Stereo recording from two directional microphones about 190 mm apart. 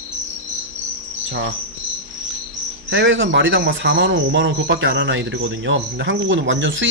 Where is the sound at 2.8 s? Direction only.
75° right (ahead or behind).